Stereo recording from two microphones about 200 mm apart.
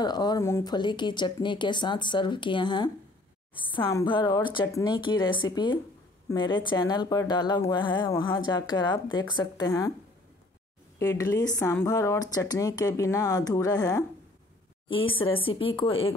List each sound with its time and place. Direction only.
0.0 s a woman's voice: 20° left (ahead or behind)
11.0 s a woman's voice: 15° left (ahead or behind)